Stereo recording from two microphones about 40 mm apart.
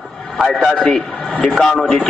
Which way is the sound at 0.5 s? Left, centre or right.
Left.